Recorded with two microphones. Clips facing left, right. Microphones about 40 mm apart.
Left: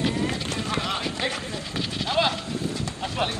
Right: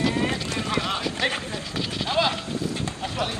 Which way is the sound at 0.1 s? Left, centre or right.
Right.